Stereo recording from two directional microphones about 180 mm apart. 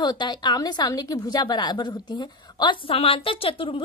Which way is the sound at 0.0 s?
25° left (ahead or behind).